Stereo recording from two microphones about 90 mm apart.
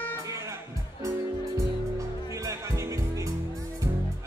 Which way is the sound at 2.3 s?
35° right (ahead or behind).